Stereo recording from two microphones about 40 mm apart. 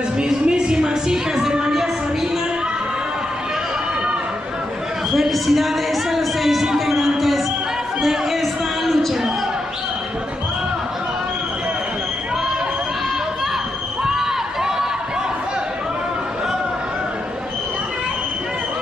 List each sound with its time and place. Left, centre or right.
0.2 s music: right
5.1 s a sound: centre
14.0 s crowd: centre